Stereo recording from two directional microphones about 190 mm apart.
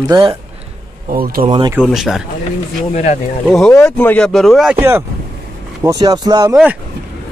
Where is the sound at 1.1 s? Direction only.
50° right (ahead or behind).